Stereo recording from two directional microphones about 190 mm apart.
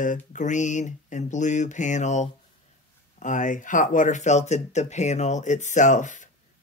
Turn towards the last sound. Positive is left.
turn(degrees=40)  # may be behind; listen again after turning